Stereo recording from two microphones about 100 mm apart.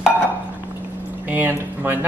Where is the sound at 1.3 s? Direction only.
20° right (ahead or behind).